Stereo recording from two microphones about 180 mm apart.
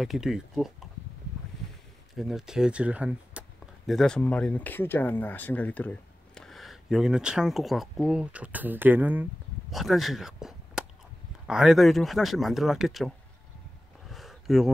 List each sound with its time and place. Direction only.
0.0 s speech: centre (ahead or behind)
2.1 s speech: centre (ahead or behind)
14.0 s a sound: centre (ahead or behind)